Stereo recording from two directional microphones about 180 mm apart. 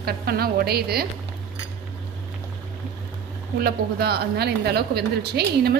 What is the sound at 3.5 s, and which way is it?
A woman's voice, 60° right (ahead or behind).